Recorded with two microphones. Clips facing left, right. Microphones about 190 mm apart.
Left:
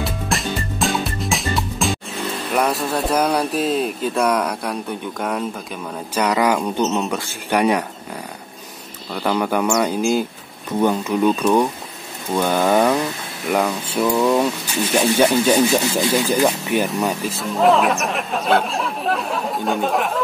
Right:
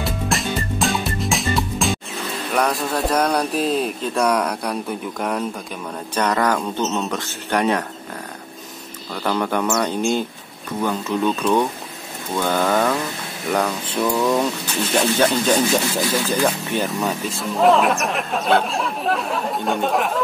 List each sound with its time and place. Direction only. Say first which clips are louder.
0.0 s music: even; centre (ahead or behind)
2.5 s speech: left 1 dB; 5° left (ahead or behind)
9.1 s speech: left 2 dB; 10° left (ahead or behind)
10.8 s speech: left 4 dB; 20° left (ahead or behind)
11.2 s speech: left 3 dB; 10° left (ahead or behind)
17.4 s speech: even; centre (ahead or behind)